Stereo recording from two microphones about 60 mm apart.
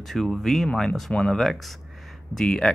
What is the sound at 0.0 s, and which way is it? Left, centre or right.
A man's voice, centre.